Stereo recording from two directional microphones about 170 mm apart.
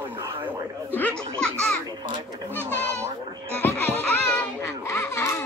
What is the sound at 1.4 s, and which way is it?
Speech, 5° left (ahead or behind).